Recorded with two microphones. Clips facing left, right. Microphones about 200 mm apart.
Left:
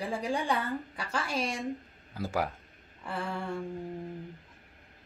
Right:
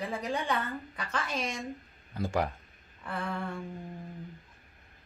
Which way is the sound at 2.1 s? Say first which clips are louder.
Right 1 dB; 5° left (ahead or behind).